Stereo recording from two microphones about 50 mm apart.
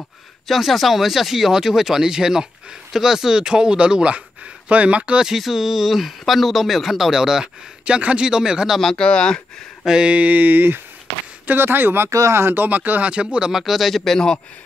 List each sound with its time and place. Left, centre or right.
0.5 s speech: centre; by 5.2 s right
5.2 s speech: centre
7.8 s speech: right
8.9 s speech: centre
9.8 s speech: centre
10.1 s speech: right
12.1 s speech: right
12.4 s speech: right
13.1 s speech: right
13.5 s speech: centre